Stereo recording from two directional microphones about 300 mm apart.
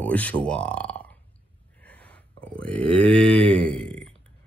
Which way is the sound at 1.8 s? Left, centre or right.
Centre.